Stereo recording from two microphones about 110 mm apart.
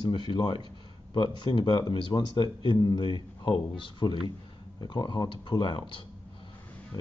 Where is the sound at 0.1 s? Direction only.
45° left (ahead or behind).